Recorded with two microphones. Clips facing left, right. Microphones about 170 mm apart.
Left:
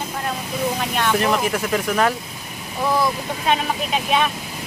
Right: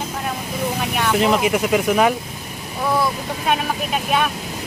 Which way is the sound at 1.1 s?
15° right (ahead or behind).